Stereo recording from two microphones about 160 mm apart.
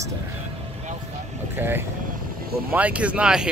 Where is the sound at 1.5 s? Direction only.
15° right (ahead or behind).